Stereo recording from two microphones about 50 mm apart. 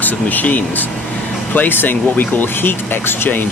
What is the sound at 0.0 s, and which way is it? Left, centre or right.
Speech, left.